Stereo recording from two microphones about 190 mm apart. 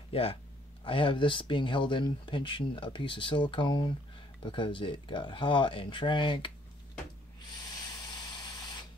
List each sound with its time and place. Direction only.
0.1 s speech: 30° left (ahead or behind)
8.0 s spray: 20° left (ahead or behind)